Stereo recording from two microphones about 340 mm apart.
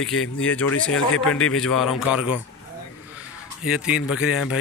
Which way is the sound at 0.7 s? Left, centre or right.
Left.